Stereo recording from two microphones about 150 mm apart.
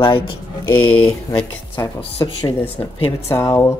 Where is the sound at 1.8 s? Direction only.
25° left (ahead or behind).